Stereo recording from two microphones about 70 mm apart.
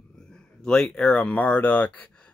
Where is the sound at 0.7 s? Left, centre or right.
Centre.